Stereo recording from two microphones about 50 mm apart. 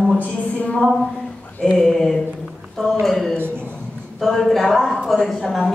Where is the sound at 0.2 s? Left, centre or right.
Left.